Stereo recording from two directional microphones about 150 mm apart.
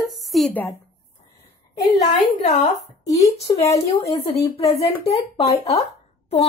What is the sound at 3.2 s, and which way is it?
Speech, 20° left (ahead or behind).